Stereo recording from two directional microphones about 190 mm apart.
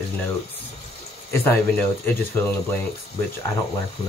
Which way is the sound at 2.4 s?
10° left (ahead or behind).